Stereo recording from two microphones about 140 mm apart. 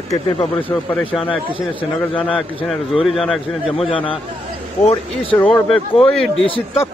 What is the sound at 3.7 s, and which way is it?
Speech, 40° left (ahead or behind).